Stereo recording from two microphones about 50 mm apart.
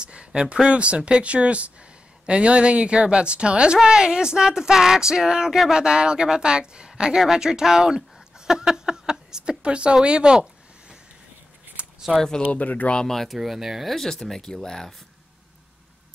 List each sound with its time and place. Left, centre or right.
0.0 s a woman's voice: centre
8.5 s a sound: centre
12.1 s a woman's voice: centre
12.5 s speech: left
12.9 s speech: centre